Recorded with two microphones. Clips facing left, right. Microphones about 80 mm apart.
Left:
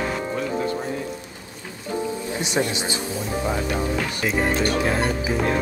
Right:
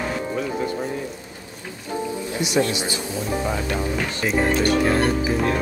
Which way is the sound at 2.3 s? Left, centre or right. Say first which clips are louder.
Right 4 dB; left.